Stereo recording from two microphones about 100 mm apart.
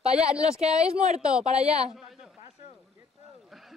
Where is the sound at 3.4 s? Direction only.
Centre (ahead or behind).